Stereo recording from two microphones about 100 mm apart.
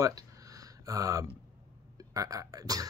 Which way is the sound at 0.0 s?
35° right (ahead or behind).